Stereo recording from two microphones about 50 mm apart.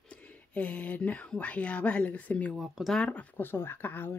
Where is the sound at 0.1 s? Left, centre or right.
Left.